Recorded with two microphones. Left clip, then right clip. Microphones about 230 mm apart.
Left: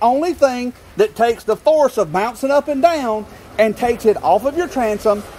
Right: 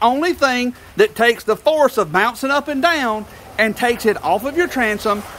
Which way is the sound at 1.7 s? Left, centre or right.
Right.